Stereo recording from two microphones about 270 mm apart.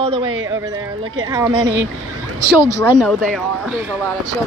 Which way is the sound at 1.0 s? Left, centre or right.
Right.